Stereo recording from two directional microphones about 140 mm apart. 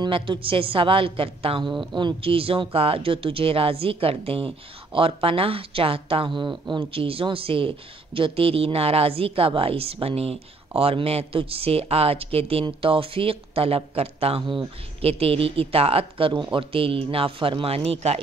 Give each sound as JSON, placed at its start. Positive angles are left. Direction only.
{"t": 0.0, "sound": "speech", "side_deg": -35}